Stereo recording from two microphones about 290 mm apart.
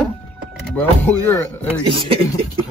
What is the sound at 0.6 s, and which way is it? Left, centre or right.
Speech, centre.